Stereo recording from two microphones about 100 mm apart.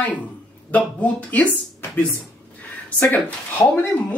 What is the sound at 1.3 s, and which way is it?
Speech, 15° left (ahead or behind).